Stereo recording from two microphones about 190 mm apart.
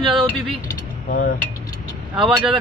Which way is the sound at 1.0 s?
45° left (ahead or behind).